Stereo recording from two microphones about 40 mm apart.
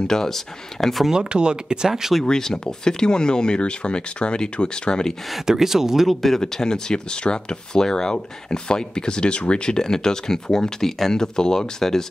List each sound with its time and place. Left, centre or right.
0.0 s speech: centre
1.1 s speech: right
2.2 s speech: centre
5.3 s speech: centre
6.2 s speech: centre